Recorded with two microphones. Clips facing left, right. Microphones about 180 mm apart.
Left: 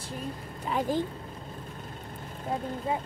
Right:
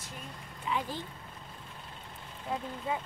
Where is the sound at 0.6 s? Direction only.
45° left (ahead or behind).